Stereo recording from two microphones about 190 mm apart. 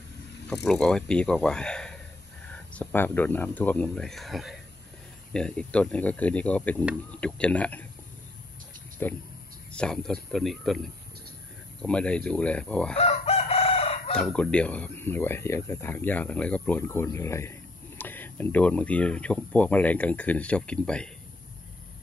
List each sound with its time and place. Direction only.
0.7 s speech: 5° left (ahead or behind)
9.0 s speech: 10° left (ahead or behind)
12.9 s chicken: 35° left (ahead or behind)
14.1 s speech: 5° left (ahead or behind)